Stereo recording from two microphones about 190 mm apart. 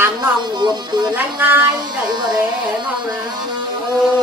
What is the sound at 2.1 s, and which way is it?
Speech, 20° right (ahead or behind).